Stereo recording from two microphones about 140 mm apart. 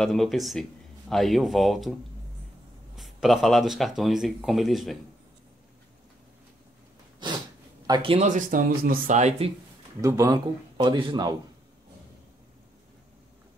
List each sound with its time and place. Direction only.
0.0 s speech: centre (ahead or behind)
3.0 s speech: centre (ahead or behind)
7.8 s speech: 35° right (ahead or behind)
8.3 s speech: 70° right (ahead or behind)
10.0 s a man's voice: 25° right (ahead or behind)